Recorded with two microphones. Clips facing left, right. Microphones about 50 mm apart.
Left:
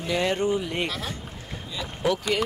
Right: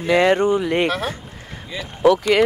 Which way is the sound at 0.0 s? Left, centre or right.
Right.